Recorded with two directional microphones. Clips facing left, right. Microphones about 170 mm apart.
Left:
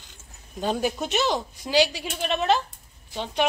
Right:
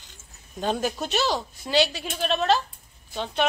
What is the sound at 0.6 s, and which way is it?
Speech, 10° left (ahead or behind).